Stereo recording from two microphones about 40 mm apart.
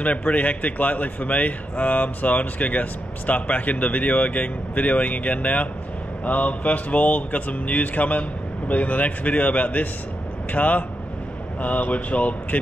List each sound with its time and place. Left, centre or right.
0.0 s a man's voice: left